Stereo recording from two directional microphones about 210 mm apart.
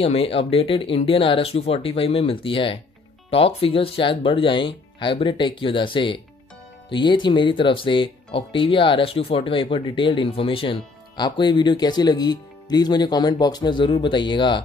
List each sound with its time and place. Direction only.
0.0 s speech: 25° left (ahead or behind)